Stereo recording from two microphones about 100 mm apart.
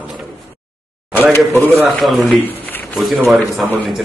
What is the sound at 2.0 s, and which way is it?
A man's voice, centre (ahead or behind).